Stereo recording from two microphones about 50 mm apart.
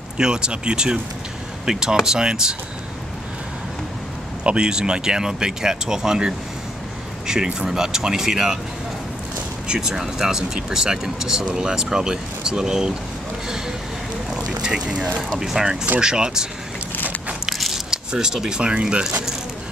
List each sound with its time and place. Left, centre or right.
0.2 s speech: centre
4.5 s speech: centre
7.5 s speech: centre
9.7 s speech: centre
14.3 s boat: centre
15.3 s speech: centre
17.5 s biting: centre
18.1 s speech: centre
18.6 s speech: right